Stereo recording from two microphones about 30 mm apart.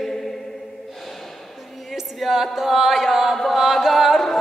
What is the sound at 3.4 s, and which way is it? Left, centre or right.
Chant, centre.